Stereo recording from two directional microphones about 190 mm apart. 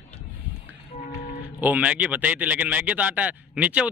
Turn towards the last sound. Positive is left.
turn(degrees=-5)  # may be behind; listen again after turning